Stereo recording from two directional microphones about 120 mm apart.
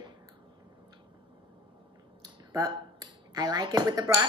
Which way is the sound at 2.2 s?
30° right (ahead or behind).